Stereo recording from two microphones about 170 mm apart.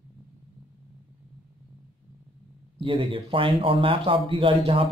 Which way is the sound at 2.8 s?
30° right (ahead or behind).